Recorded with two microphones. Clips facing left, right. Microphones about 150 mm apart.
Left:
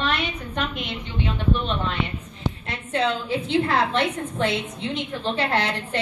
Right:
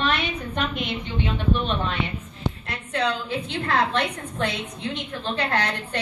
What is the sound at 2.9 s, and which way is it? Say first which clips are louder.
A woman's voice: left 2 dB; 25° left (ahead or behind).